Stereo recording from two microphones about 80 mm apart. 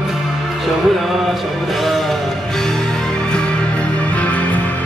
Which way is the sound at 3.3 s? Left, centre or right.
Centre.